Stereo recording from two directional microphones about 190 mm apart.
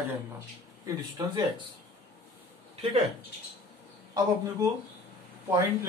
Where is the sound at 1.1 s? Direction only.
20° right (ahead or behind).